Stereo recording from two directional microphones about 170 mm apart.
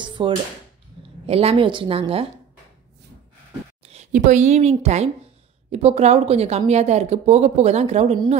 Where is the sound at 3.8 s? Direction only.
40° right (ahead or behind).